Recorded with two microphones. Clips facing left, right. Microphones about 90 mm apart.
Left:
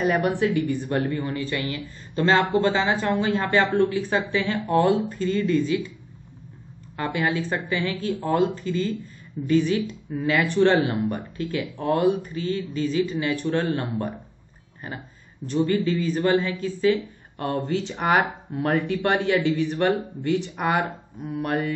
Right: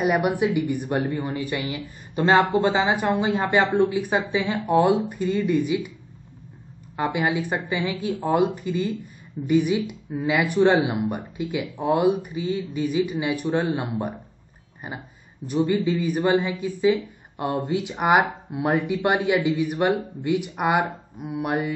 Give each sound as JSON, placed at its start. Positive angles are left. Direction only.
{"t": 0.0, "sound": "a woman's voice", "side_deg": -15}
{"t": 7.0, "sound": "a woman's voice", "side_deg": -15}